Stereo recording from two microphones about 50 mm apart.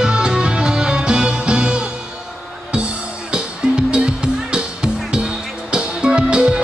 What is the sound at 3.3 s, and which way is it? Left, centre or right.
Music, centre.